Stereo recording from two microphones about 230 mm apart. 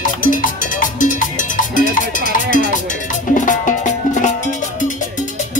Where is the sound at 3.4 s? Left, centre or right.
Left.